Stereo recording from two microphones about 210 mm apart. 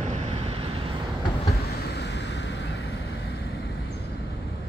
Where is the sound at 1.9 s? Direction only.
55° left (ahead or behind).